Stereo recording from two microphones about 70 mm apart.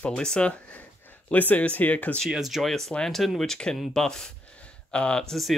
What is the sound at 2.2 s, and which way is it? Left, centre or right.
Speech, centre.